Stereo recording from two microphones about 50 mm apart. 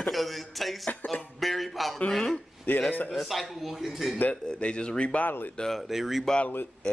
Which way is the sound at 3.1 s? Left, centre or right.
Centre.